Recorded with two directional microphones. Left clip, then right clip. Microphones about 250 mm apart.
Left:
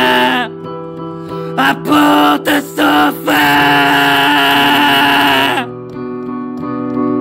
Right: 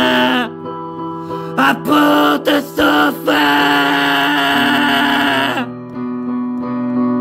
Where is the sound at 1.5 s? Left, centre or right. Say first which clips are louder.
Left 1 dB; centre.